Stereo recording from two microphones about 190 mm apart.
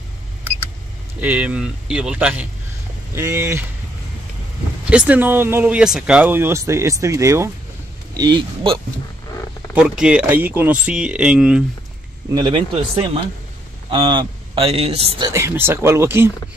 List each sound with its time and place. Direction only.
1.2 s speech: 5° right (ahead or behind)
4.8 s a man's voice: 5° right (ahead or behind); by 8.7 s 25° right (ahead or behind)
9.8 s speech: 5° right (ahead or behind)
12.4 s a man's voice: 25° right (ahead or behind)
15.2 s speech: 15° right (ahead or behind)